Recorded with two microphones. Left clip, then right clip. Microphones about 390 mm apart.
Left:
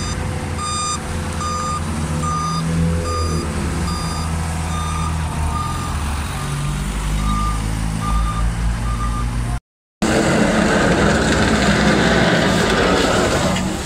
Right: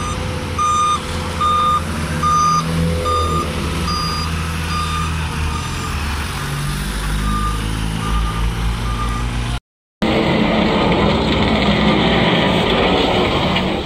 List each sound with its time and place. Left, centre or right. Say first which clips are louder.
10.0 s vehicle: even; left